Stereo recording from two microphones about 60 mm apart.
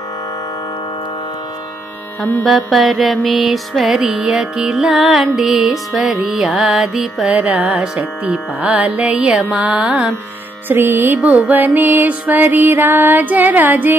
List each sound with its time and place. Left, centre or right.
2.4 s music: centre
7.2 s carnatic music: right
9.0 s music: centre
10.7 s music: right
11.1 s music: right